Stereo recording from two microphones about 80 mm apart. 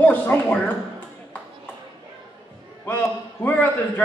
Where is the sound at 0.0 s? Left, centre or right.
Left.